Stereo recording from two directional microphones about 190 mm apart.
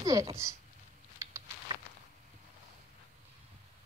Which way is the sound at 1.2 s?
20° right (ahead or behind).